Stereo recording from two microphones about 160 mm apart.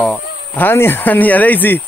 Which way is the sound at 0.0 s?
10° left (ahead or behind).